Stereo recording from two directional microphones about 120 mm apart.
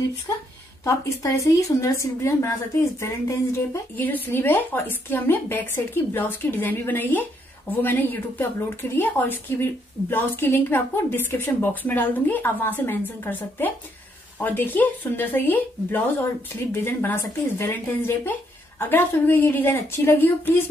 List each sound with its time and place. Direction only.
0.3 s a woman's voice: 25° left (ahead or behind)